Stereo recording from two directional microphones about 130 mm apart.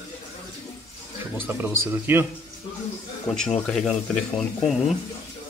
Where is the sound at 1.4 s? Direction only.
15° right (ahead or behind).